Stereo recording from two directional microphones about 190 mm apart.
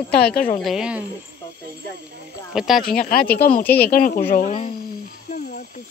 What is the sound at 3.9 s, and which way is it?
Speech, 50° left (ahead or behind).